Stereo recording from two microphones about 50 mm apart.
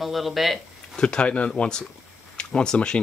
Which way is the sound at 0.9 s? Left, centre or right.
Centre.